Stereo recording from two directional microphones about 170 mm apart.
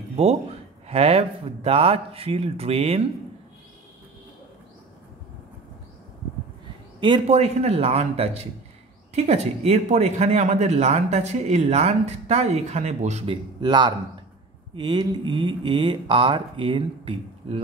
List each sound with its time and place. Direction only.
0.1 s a sound: 40° right (ahead or behind)
0.8 s speech: 35° right (ahead or behind)
7.0 s speech: 35° right (ahead or behind)